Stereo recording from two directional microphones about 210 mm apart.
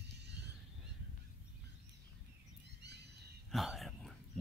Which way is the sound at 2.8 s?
55° right (ahead or behind).